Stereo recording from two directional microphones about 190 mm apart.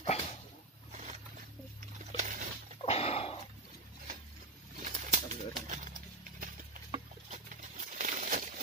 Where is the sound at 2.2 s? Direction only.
45° right (ahead or behind).